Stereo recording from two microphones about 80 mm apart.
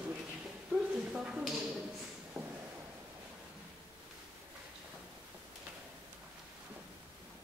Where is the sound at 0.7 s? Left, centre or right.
Centre.